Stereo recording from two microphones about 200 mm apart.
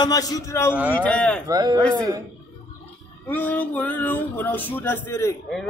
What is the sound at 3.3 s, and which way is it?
Speech, 10° left (ahead or behind).